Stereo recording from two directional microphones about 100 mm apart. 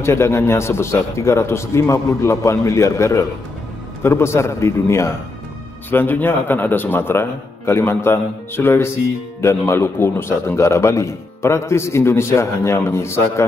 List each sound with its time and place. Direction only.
0.0 s a man's voice: 25° left (ahead or behind)